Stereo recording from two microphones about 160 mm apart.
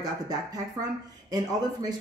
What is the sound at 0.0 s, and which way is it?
Speech, 25° right (ahead or behind).